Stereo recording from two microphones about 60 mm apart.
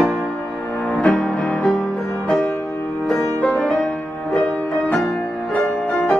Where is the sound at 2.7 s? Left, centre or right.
Left.